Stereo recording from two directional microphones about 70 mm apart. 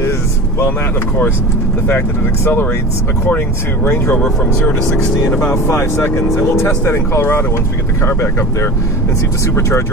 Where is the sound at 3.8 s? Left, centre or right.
Left.